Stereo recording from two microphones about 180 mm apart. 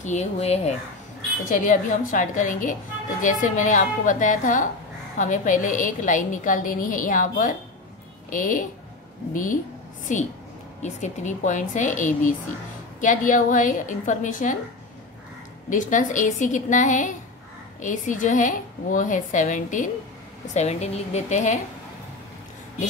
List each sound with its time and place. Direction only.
0.0 s a woman's voice: 40° left (ahead or behind)
15.7 s a woman's voice: 45° left (ahead or behind)